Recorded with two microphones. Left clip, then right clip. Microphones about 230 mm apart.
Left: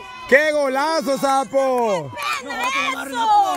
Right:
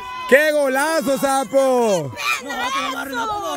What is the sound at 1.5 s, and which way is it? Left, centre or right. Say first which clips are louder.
Speech: right 2 dB; right.